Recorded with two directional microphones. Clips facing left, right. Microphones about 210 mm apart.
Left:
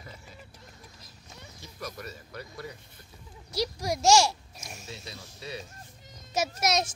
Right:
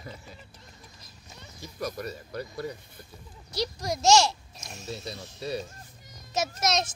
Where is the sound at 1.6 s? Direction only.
40° right (ahead or behind).